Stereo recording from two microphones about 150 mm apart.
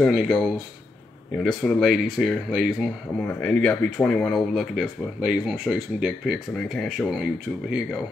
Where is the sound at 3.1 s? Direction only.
10° left (ahead or behind).